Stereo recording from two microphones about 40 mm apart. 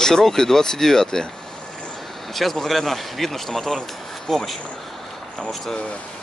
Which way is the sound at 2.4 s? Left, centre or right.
Centre.